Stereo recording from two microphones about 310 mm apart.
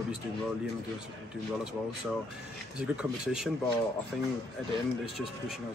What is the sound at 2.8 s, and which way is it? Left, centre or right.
Speech, centre.